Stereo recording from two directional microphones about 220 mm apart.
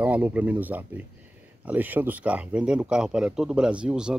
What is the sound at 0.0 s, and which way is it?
Speech, 5° right (ahead or behind).